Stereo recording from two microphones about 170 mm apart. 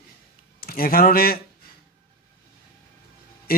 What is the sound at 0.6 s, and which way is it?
Speech, 60° left (ahead or behind).